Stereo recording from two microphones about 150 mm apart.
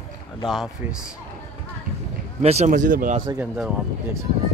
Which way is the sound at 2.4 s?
45° right (ahead or behind).